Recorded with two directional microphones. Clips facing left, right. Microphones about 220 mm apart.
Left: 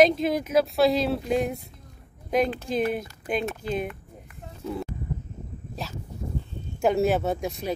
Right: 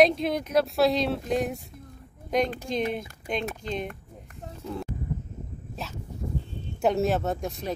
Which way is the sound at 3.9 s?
45° right (ahead or behind).